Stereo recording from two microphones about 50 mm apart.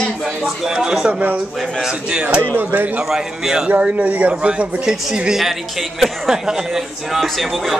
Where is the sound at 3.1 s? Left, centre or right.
Centre.